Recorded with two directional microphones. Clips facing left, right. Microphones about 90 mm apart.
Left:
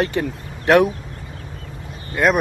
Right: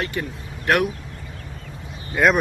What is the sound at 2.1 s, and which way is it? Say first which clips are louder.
Speech: even; centre (ahead or behind).